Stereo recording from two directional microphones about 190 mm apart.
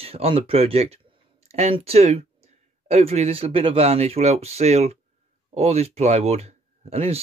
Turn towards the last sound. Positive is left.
turn(degrees=-35)  # may be behind; listen again after turning